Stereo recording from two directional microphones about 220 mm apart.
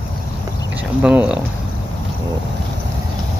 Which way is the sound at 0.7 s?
5° right (ahead or behind).